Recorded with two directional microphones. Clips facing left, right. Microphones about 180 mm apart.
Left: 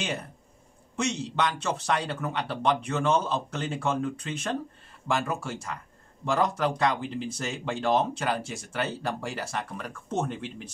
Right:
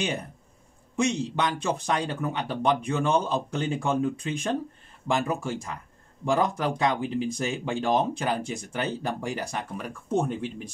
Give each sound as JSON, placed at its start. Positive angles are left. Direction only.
{"t": 0.9, "sound": "speech", "side_deg": -15}